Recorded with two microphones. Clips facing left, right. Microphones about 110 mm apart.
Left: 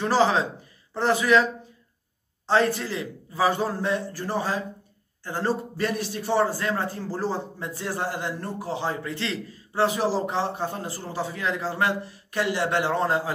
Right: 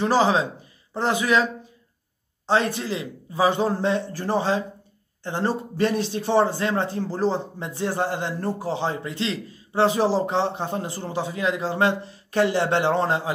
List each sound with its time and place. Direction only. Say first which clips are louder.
0.0 s a man's voice: right 2 dB; 15° right (ahead or behind)